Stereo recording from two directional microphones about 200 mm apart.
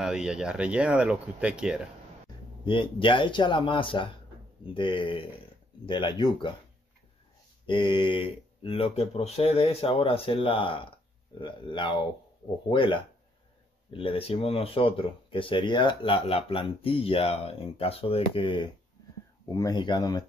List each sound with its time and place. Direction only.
0.0 s speech: 5° right (ahead or behind)
2.6 s speech: 25° left (ahead or behind)
7.6 s speech: 25° left (ahead or behind)